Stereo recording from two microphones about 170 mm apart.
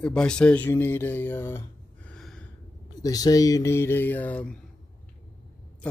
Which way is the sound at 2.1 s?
Centre (ahead or behind).